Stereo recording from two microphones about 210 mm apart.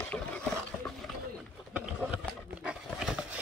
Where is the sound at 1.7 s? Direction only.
5° right (ahead or behind).